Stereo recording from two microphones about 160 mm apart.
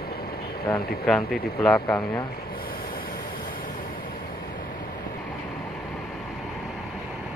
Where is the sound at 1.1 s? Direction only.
Centre (ahead or behind).